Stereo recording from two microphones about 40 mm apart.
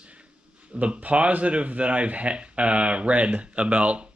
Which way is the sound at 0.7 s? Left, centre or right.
Right.